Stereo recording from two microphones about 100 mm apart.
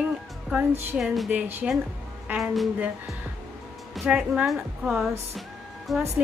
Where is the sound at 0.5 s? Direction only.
5° right (ahead or behind).